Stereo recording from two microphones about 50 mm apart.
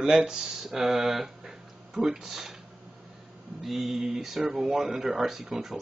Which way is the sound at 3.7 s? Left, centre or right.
Centre.